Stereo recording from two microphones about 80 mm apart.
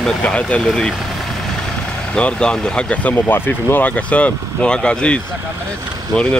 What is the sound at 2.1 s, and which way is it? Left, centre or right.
Speech, centre.